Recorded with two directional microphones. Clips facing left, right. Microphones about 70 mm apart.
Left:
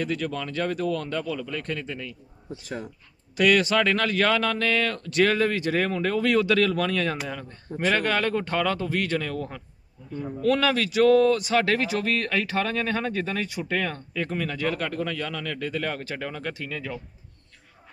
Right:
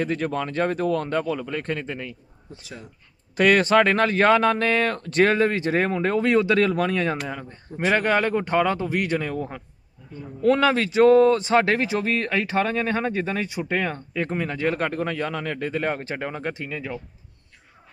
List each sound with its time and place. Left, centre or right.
0.0 s speech: right
2.6 s speech: left
3.3 s speech: right; by 17.0 s centre